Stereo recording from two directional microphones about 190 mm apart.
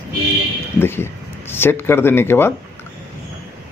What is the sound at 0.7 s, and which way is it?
Speech, 10° left (ahead or behind).